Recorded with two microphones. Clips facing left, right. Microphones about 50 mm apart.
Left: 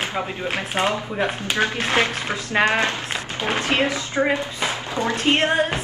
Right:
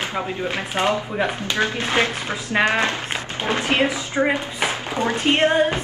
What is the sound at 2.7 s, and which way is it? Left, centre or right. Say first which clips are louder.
A woman's voice: even; right.